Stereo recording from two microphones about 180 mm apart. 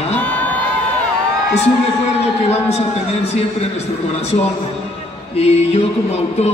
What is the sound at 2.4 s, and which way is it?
Speech, 35° left (ahead or behind).